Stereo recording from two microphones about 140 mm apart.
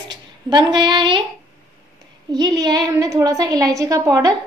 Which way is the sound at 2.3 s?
30° right (ahead or behind).